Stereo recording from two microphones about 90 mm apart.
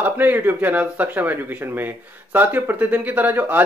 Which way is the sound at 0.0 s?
20° right (ahead or behind).